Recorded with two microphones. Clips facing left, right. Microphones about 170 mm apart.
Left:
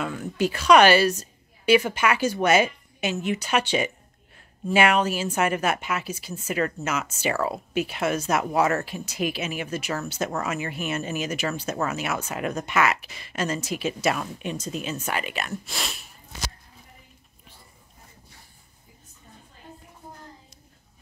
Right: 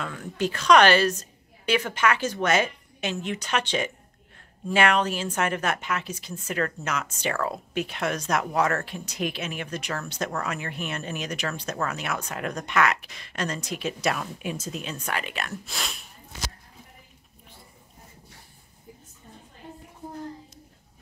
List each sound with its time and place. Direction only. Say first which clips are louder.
0.0 s a woman's voice: left 3 dB; 5° left (ahead or behind)